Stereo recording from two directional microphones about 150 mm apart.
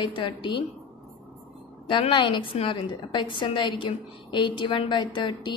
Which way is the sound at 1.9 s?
35° left (ahead or behind).